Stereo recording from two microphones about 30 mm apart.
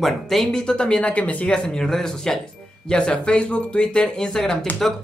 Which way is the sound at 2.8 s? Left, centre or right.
Left.